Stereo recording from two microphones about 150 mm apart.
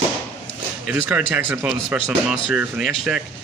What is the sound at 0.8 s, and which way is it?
Speech, 10° right (ahead or behind).